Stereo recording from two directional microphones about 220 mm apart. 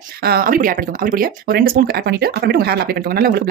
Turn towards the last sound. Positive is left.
turn(degrees=-45)  # may be behind; listen again after turning